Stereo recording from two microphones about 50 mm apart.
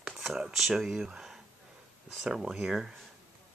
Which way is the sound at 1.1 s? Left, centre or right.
Centre.